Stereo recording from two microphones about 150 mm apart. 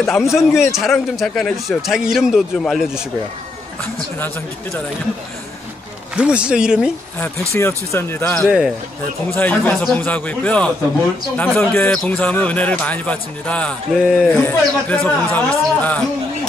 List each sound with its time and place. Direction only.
0.0 s speech: centre (ahead or behind)
6.1 s speech: 5° right (ahead or behind)
7.2 s a man's voice: 15° left (ahead or behind)
8.5 s speech: 5° right (ahead or behind)
9.3 s a man's voice: 10° left (ahead or behind)